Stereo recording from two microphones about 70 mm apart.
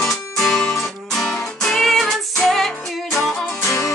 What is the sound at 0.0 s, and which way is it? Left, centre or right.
Music, centre.